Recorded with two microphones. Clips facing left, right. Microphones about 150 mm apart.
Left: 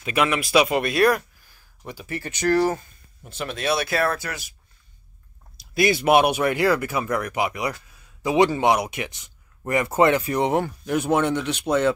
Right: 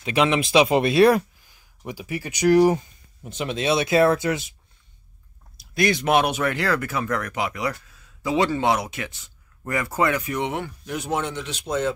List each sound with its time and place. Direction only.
0.1 s speech: 20° right (ahead or behind)
1.4 s speech: 15° right (ahead or behind)
5.6 s speech: 5° left (ahead or behind); by 11.9 s 65° left (ahead or behind)